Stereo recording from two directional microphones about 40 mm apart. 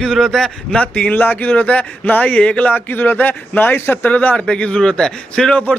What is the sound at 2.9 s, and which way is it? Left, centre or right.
A man's voice, left.